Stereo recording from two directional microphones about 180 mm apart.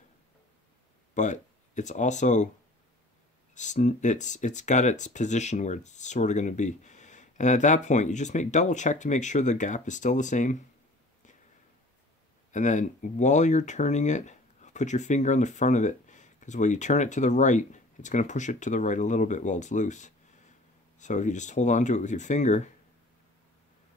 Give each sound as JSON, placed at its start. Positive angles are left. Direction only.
{"t": 1.1, "sound": "speech", "side_deg": 40}
{"t": 3.5, "sound": "speech", "side_deg": 40}
{"t": 12.5, "sound": "speech", "side_deg": 45}